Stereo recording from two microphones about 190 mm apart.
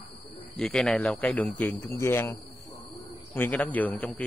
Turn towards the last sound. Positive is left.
turn(degrees=5)  # may be behind; listen again after turning